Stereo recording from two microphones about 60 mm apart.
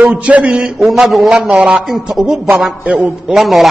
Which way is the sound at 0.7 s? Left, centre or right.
Centre.